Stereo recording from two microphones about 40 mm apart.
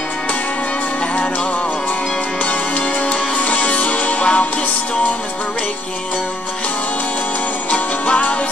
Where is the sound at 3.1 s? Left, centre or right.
Left.